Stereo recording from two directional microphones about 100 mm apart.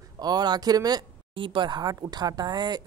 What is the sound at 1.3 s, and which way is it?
A woman's voice, 55° right (ahead or behind).